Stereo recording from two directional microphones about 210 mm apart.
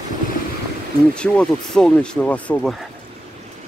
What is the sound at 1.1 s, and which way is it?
Speech, 5° left (ahead or behind).